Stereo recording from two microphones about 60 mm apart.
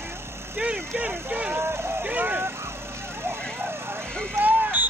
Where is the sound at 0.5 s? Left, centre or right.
Right.